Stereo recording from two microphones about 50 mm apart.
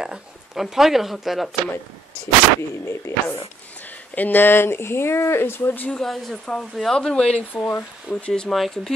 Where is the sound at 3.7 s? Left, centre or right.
Left.